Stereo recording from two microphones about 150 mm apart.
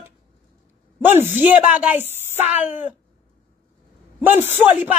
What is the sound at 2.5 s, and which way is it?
Speech, 10° right (ahead or behind).